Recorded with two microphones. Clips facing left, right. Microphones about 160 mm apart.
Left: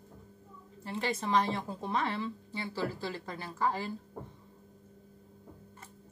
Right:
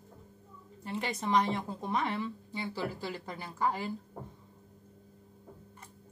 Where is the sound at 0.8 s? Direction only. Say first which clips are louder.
Left 1 dB; 15° right (ahead or behind).